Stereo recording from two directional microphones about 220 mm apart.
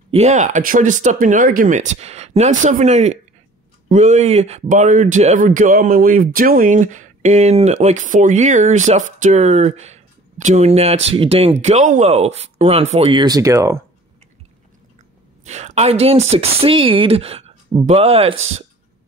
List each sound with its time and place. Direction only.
0.1 s speech: 30° right (ahead or behind); by 13.7 s 15° right (ahead or behind)
15.4 s a woman's voice: 30° right (ahead or behind)